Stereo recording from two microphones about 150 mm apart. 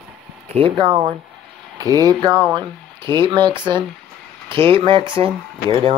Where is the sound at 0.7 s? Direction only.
30° right (ahead or behind).